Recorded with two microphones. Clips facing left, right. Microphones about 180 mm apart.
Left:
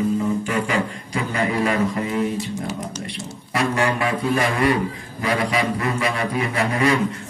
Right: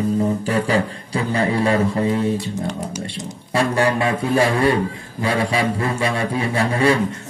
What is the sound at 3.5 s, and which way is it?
A man's voice, 30° right (ahead or behind).